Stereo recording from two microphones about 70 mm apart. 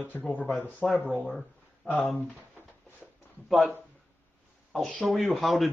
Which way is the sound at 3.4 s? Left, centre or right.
Centre.